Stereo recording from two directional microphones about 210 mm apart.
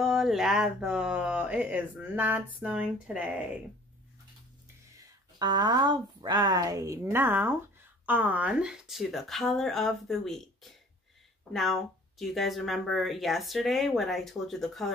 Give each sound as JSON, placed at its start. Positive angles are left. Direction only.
{"t": 0.0, "sound": "speech", "side_deg": 0}
{"t": 5.4, "sound": "speech", "side_deg": -20}